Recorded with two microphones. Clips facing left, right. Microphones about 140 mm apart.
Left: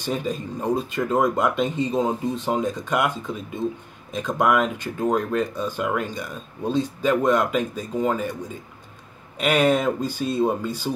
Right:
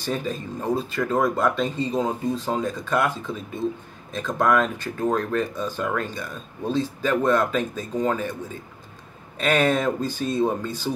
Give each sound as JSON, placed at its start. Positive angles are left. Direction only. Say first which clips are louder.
{"t": 0.0, "sound": "speech", "louder": "left 1 dB", "side_deg": 15}
{"t": 9.4, "sound": "speech", "louder": "left 1 dB", "side_deg": 10}